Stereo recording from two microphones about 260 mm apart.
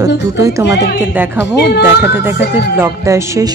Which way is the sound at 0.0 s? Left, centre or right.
Centre.